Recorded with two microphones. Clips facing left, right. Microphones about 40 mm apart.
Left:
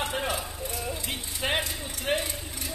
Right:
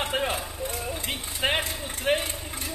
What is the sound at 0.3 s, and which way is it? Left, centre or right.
Vehicle, right.